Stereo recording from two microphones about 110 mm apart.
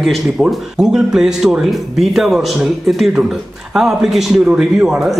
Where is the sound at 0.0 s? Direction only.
Centre (ahead or behind).